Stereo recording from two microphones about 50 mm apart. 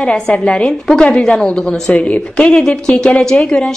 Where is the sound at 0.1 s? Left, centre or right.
Left.